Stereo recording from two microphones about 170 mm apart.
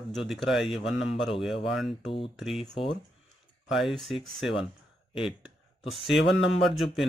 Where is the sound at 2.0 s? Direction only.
30° left (ahead or behind).